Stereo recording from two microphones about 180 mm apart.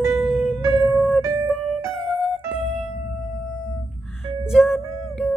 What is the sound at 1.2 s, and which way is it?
Music, 20° right (ahead or behind).